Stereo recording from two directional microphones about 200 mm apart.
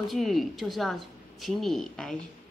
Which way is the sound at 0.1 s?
Centre (ahead or behind).